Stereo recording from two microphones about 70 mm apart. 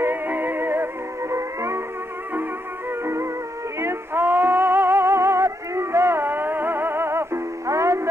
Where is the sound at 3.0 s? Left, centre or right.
Right.